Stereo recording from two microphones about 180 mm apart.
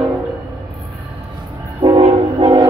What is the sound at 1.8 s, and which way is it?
Train, 35° right (ahead or behind).